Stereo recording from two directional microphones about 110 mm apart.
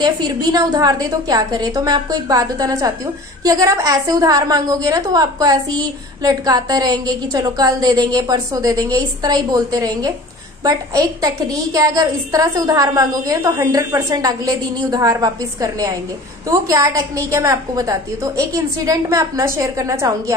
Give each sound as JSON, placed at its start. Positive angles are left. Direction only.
{"t": 0.0, "sound": "a woman's voice", "side_deg": -40}